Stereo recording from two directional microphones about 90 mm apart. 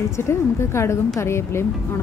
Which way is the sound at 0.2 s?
30° left (ahead or behind).